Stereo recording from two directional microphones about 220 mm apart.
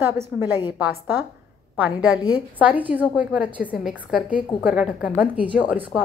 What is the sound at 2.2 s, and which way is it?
Speech, 20° left (ahead or behind).